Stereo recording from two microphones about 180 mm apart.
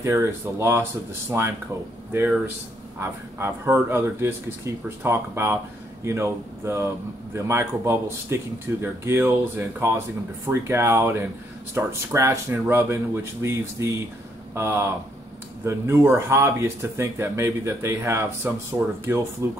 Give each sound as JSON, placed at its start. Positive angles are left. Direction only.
{"t": 0.0, "sound": "speech", "side_deg": -15}
{"t": 2.2, "sound": "speech", "side_deg": -5}
{"t": 3.0, "sound": "speech", "side_deg": -15}